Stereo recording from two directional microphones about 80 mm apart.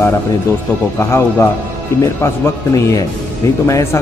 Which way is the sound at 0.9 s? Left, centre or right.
Left.